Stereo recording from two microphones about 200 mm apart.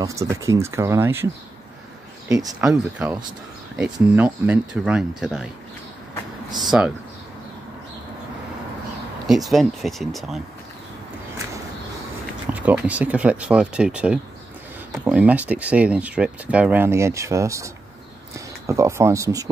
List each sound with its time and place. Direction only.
0.0 s speech: 15° right (ahead or behind)
2.6 s speech: 5° right (ahead or behind)
6.6 s speech: 5° right (ahead or behind)
9.3 s speech: centre (ahead or behind)
12.5 s speech: 5° right (ahead or behind)
18.7 s speech: 15° right (ahead or behind)